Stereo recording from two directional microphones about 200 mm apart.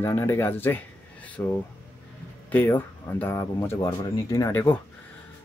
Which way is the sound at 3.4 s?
20° left (ahead or behind).